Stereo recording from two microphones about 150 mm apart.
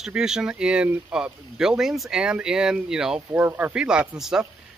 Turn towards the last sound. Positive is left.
turn(degrees=-5)  # may be behind; listen again after turning